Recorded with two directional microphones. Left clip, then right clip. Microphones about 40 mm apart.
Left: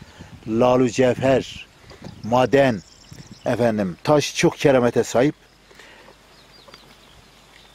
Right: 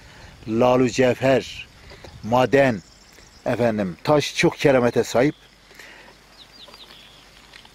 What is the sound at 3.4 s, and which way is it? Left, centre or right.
Speech, left.